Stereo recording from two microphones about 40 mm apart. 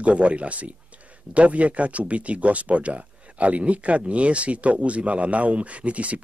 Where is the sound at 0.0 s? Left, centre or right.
Right.